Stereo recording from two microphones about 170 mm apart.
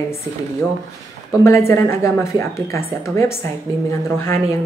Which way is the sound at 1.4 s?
15° left (ahead or behind).